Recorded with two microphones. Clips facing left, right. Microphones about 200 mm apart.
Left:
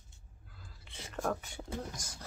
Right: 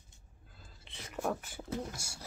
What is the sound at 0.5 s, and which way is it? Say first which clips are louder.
Whispering: left 1 dB; 25° right (ahead or behind).